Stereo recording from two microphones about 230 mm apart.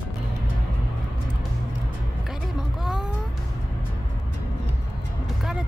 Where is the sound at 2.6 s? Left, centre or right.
Centre.